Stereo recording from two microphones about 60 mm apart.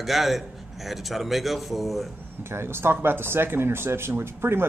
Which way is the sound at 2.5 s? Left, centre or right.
Right.